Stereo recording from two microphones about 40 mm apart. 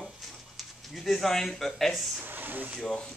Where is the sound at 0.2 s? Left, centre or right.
Centre.